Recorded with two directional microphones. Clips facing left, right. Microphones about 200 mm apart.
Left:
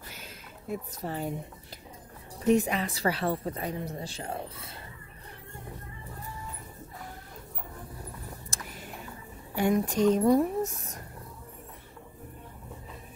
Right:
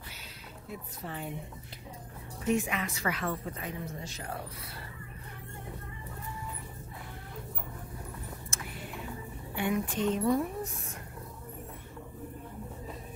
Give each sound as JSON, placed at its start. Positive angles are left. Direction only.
{"t": 0.7, "sound": "a woman's voice", "side_deg": 40}
{"t": 2.4, "sound": "a woman's voice", "side_deg": 35}
{"t": 8.5, "sound": "vehicle", "side_deg": 40}
{"t": 9.6, "sound": "a woman's voice", "side_deg": 40}